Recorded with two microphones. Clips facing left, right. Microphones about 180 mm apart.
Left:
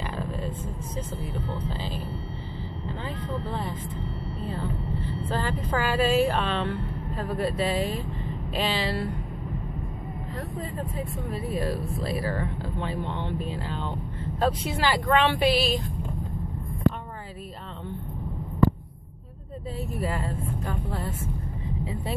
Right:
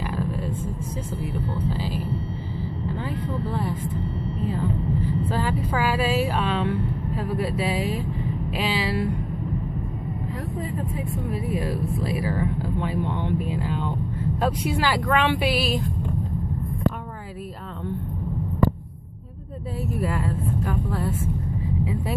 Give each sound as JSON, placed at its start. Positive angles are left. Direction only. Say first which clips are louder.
{"t": 0.1, "sound": "vehicle", "louder": "right 4 dB", "side_deg": -5}
{"t": 1.7, "sound": "a sound", "louder": "right 5 dB", "side_deg": -10}
{"t": 5.4, "sound": "speech", "louder": "right 1 dB", "side_deg": -10}
{"t": 11.2, "sound": "speech", "louder": "right 1 dB", "side_deg": -15}